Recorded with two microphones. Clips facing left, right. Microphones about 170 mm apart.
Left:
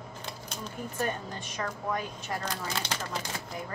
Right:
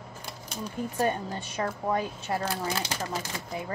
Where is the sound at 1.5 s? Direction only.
30° right (ahead or behind).